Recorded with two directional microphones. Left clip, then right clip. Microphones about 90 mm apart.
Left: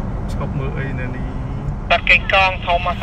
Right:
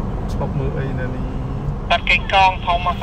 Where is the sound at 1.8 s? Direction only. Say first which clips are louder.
Left 3 dB; 30° left (ahead or behind).